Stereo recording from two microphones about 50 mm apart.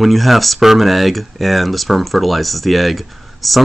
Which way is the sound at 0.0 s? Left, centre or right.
Centre.